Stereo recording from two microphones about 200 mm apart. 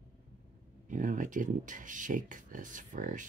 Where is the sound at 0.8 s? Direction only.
40° right (ahead or behind).